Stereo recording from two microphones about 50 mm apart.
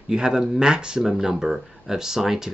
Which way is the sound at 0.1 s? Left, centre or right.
Centre.